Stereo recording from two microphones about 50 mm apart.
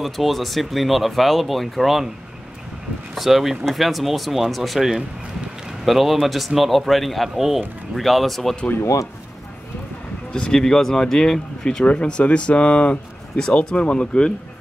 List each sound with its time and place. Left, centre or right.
0.0 s a man's voice: centre
3.2 s a man's voice: centre
10.3 s speech: centre
11.8 s speech: left